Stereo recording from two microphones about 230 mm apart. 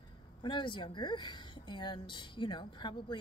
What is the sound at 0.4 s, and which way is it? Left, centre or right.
Speech, left.